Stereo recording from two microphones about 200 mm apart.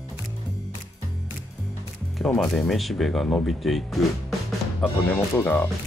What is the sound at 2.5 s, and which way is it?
Speech, centre (ahead or behind).